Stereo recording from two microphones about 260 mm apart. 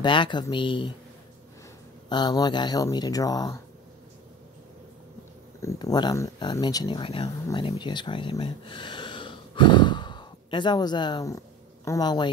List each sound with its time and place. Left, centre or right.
0.0 s speech: centre
2.0 s speech: centre
5.6 s speech: centre